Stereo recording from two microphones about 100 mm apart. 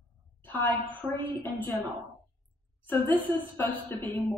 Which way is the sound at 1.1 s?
20° left (ahead or behind).